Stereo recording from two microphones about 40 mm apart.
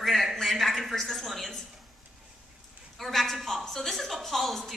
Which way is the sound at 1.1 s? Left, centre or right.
Centre.